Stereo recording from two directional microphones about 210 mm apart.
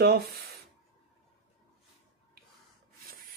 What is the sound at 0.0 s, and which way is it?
Speech, 45° right (ahead or behind).